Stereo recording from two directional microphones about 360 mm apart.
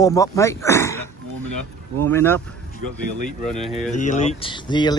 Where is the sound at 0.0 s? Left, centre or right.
Centre.